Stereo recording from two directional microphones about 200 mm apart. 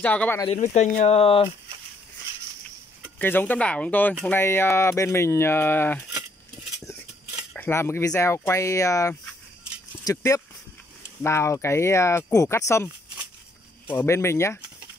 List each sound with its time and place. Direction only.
0.0 s speech: 5° left (ahead or behind)
0.6 s speech: 35° left (ahead or behind)
3.2 s speech: 10° left (ahead or behind)
7.5 s speech: 10° left (ahead or behind)